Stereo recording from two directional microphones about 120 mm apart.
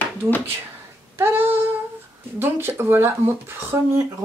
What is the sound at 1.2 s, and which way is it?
Child singing, 15° right (ahead or behind).